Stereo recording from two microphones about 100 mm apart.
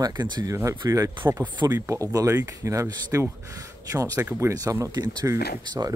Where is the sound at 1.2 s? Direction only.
20° right (ahead or behind).